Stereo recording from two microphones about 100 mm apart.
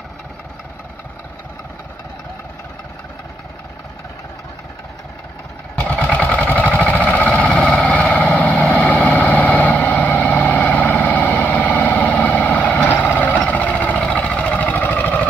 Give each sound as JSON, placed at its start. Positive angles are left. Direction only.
{"t": 5.8, "sound": "vehicle", "side_deg": 15}